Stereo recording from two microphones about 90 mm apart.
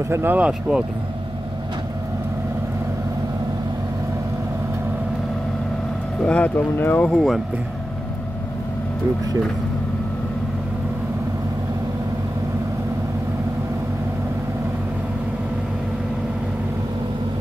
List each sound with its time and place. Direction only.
0.1 s speech: 25° right (ahead or behind)
0.4 s speech: 10° right (ahead or behind)
6.2 s speech: 15° left (ahead or behind)
7.1 s speech: centre (ahead or behind)